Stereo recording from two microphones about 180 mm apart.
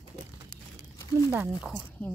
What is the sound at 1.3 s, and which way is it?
Speech, 10° right (ahead or behind).